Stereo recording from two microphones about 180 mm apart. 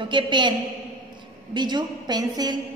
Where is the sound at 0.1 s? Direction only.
25° right (ahead or behind).